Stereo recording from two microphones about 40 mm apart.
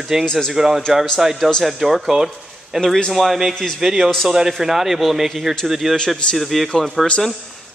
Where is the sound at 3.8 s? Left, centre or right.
Centre.